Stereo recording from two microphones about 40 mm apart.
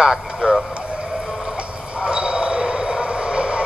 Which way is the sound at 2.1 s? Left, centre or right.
Right.